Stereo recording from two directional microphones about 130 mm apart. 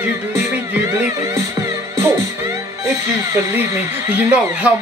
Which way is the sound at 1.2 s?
25° right (ahead or behind).